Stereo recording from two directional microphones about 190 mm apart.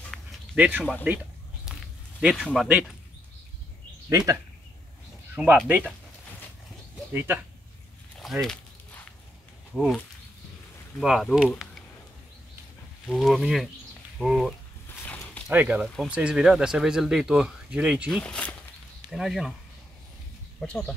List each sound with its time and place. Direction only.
0.1 s a sound: centre (ahead or behind)
0.6 s speech: 10° right (ahead or behind)
1.7 s a sound: centre (ahead or behind)
5.3 s speech: 10° right (ahead or behind)
7.1 s speech: 10° right (ahead or behind)
8.2 s a sound: centre (ahead or behind)
9.8 s speech: centre (ahead or behind)
13.1 s speech: centre (ahead or behind)
15.0 s zipper: 5° left (ahead or behind)
15.5 s speech: 10° right (ahead or behind)
18.2 s speech: 5° left (ahead or behind)
20.6 s speech: 5° left (ahead or behind)